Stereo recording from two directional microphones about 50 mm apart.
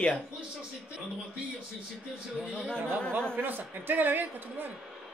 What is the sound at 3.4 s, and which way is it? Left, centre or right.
A woman's voice, right.